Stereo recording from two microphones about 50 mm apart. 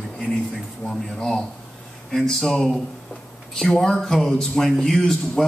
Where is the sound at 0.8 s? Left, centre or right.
Left.